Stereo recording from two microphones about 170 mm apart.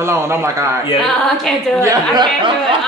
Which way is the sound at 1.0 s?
5° left (ahead or behind).